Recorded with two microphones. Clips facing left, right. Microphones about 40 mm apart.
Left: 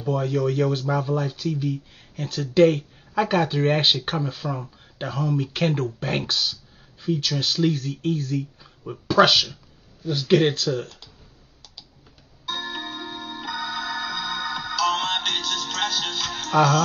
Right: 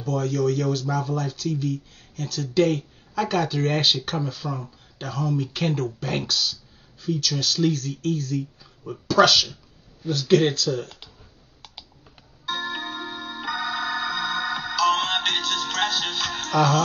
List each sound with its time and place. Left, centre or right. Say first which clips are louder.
0.0 s speech: even; centre
2.2 s speech: left 4 dB; left
10.5 s speech: even; left
12.4 s music: right 2 dB; centre